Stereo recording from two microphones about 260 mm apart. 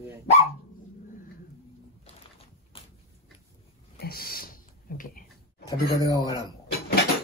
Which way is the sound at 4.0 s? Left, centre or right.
Left.